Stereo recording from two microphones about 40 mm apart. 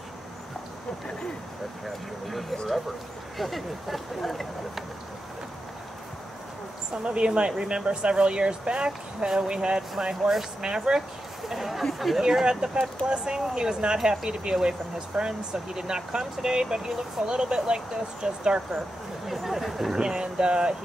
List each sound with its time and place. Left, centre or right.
1.9 s speech: centre
7.0 s speech: right; by 12.4 s centre
12.4 s speech: centre
19.2 s speech: centre
20.0 s speech: centre